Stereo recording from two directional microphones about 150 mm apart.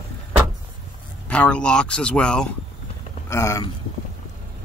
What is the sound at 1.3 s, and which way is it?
Speech, 5° left (ahead or behind).